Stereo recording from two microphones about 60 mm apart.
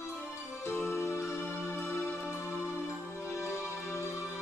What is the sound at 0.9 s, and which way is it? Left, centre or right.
Music, left.